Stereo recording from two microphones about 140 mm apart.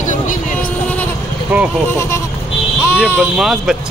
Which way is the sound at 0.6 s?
10° left (ahead or behind).